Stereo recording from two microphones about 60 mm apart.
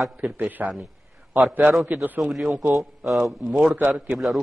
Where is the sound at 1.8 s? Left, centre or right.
Right.